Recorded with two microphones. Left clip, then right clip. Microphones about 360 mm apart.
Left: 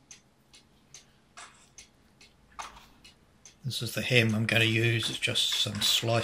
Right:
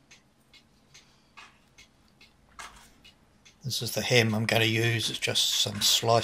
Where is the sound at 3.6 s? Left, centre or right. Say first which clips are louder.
Right 2 dB; centre.